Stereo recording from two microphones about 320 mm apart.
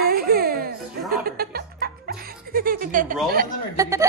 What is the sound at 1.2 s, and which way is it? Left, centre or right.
Music, right.